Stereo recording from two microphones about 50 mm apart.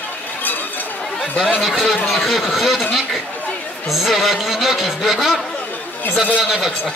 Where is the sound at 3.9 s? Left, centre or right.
Centre.